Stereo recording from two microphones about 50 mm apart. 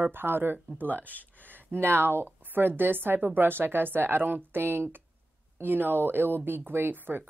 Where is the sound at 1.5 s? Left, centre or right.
Right.